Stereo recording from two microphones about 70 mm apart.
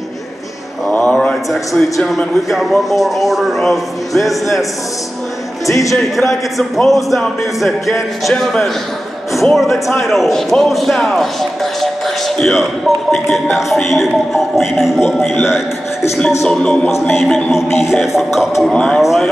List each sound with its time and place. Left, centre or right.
0.9 s mantra: centre
1.5 s a man's voice: centre
5.7 s speech: left
5.9 s a man's voice: centre
12.4 s a man's voice: centre
16.4 s music: centre
17.1 s a man's voice: centre
17.6 s music: left
18.0 s a man's voice: centre
18.7 s music: centre
18.9 s a man's voice: centre